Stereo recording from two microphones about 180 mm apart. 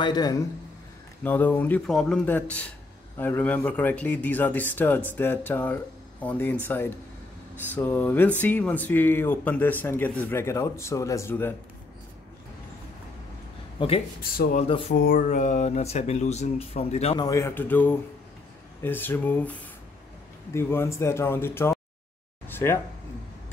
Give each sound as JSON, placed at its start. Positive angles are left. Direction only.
{"t": 0.0, "sound": "a man's voice", "side_deg": 20}
{"t": 1.2, "sound": "speech", "side_deg": 10}
{"t": 7.7, "sound": "speech", "side_deg": 10}
{"t": 13.7, "sound": "speech", "side_deg": 30}
{"t": 14.2, "sound": "speech", "side_deg": 55}
{"t": 14.6, "sound": "speech", "side_deg": 35}
{"t": 15.0, "sound": "speech", "side_deg": 50}
{"t": 17.2, "sound": "speech", "side_deg": 15}
{"t": 20.5, "sound": "speech", "side_deg": 15}
{"t": 22.5, "sound": "a sound", "side_deg": 15}